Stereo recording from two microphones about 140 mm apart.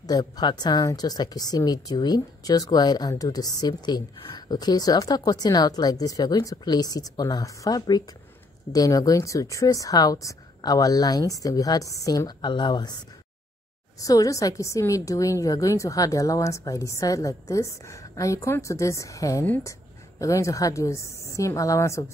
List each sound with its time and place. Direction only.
0.0 s a woman's voice: 30° left (ahead or behind)
14.0 s a woman's voice: 25° left (ahead or behind)